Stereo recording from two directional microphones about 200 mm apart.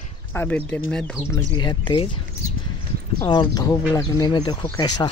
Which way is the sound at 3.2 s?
20° left (ahead or behind).